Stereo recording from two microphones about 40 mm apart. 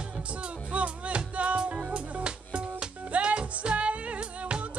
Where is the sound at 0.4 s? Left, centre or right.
Right.